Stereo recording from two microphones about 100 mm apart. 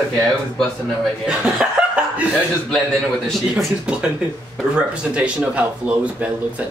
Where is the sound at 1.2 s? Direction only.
10° right (ahead or behind).